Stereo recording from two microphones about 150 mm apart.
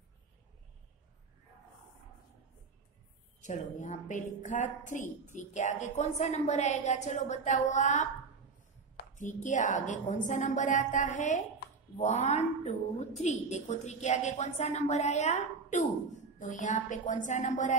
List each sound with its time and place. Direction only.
3.3 s a woman's voice: 55° left (ahead or behind)